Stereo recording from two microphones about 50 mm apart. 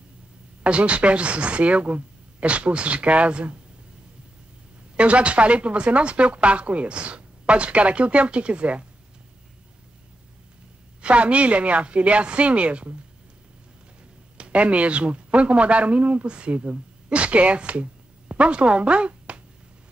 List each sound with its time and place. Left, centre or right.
0.7 s speech: right
4.9 s speech: right
11.0 s speech: right
14.3 s speech: right